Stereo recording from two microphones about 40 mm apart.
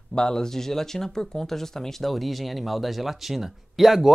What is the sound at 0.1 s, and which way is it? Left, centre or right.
Speech, centre.